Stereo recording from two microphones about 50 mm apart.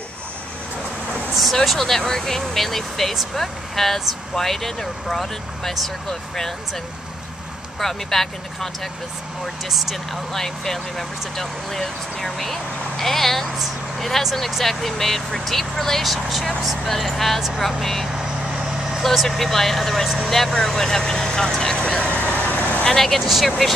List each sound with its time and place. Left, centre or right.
1.3 s speech: centre
7.8 s speech: centre
9.7 s speech: centre
10.4 s speech: centre
18.8 s vehicle: centre
19.0 s speech: centre; by 22.4 s left
22.5 s vehicle: left
22.8 s speech: centre